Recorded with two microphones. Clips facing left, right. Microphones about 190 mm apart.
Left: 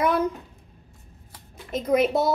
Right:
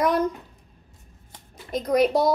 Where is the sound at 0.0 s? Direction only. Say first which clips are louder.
Right 1 dB; 5° left (ahead or behind).